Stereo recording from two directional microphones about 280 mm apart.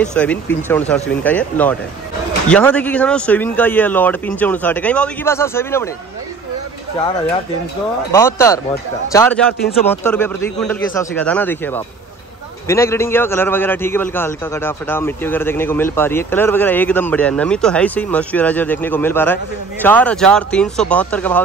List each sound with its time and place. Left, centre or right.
0.0 s speech: centre
8.1 s speech: centre